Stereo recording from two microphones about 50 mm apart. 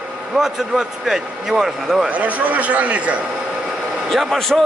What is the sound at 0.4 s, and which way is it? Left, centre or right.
A man's voice, centre.